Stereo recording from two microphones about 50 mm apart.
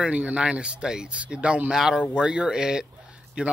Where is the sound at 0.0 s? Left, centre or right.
Right.